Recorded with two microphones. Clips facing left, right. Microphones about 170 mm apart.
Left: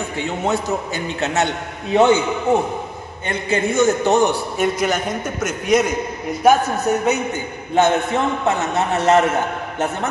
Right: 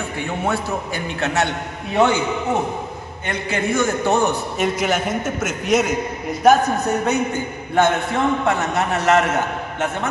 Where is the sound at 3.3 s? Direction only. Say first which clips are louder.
Left 2 dB; 25° left (ahead or behind).